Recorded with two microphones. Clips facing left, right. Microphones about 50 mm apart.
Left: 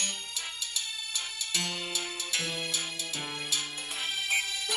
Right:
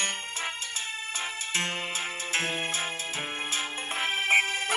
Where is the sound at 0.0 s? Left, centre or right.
Right.